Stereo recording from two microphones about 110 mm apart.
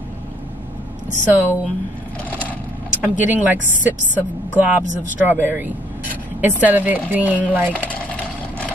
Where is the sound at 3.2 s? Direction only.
15° right (ahead or behind).